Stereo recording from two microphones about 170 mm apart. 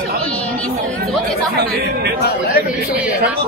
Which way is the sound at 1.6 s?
65° right (ahead or behind).